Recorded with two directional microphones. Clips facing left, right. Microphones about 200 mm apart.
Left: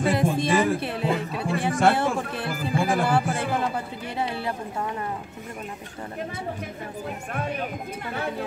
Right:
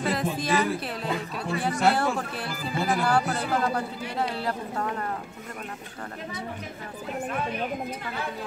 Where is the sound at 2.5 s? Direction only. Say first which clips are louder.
Left 3 dB; 50° left (ahead or behind).